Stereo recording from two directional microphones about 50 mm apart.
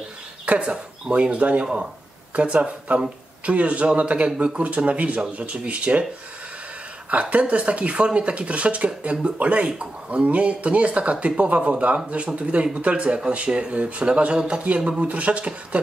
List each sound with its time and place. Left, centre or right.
0.5 s speech: centre
7.1 s speech: right